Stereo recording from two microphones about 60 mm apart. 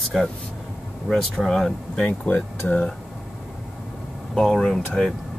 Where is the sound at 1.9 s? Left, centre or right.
Left.